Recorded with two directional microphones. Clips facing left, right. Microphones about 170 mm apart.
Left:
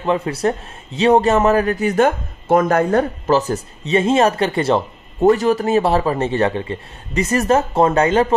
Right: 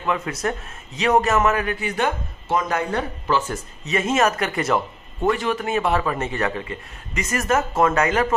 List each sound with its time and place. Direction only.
0.0 s a man's voice: 30° left (ahead or behind)